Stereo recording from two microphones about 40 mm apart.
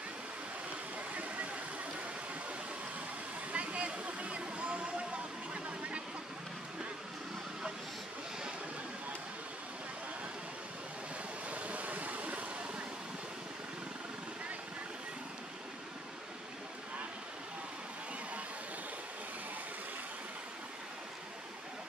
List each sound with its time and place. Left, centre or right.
1.1 s vehicle: right
3.5 s a sound: right
11.5 s vehicle: right